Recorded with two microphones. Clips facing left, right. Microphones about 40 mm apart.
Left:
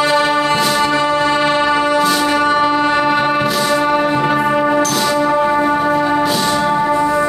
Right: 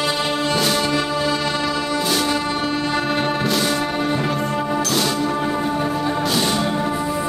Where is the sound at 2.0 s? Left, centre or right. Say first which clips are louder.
Left 6 dB; centre.